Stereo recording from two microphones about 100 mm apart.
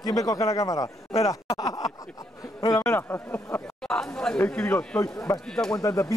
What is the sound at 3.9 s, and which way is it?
Speech, 10° left (ahead or behind).